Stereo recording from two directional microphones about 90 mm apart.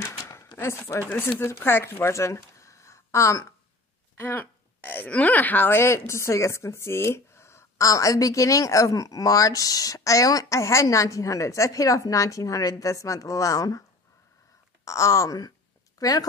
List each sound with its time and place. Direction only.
0.0 s a sound: 30° left (ahead or behind)
0.6 s speech: 30° left (ahead or behind)
4.2 s speech: 25° left (ahead or behind); by 13.8 s 40° left (ahead or behind)
14.9 s a woman's voice: 35° left (ahead or behind)